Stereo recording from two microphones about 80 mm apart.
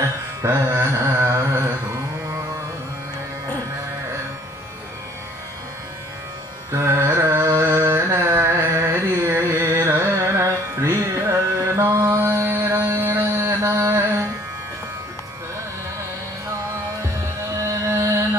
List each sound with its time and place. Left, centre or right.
0.6 s a sound: right
6.9 s carnatic music: right
10.0 s music: right
17.8 s music: right